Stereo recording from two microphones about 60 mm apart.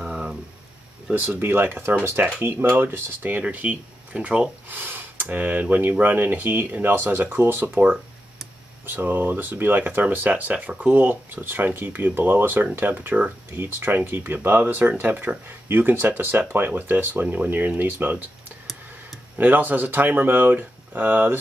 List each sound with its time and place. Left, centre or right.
0.1 s a sound: centre
1.1 s speech: right
4.6 s speech: right
13.5 s speech: right
19.3 s speech: right